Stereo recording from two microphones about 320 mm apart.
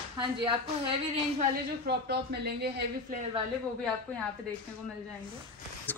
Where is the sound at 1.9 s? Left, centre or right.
Right.